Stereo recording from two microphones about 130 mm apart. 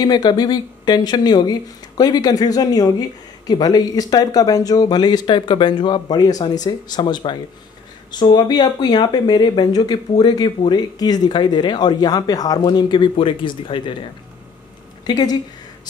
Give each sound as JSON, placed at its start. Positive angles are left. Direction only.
{"t": 0.0, "sound": "speech", "side_deg": 30}
{"t": 15.0, "sound": "speech", "side_deg": 30}